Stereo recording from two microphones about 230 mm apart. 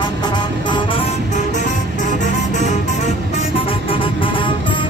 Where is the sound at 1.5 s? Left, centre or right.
Left.